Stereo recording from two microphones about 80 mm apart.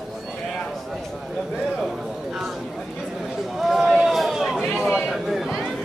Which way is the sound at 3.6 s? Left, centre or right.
Centre.